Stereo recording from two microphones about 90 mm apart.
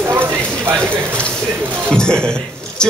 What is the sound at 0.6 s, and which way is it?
Speech, 25° right (ahead or behind).